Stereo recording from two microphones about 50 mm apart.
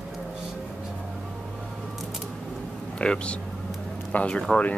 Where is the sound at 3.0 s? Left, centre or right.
Left.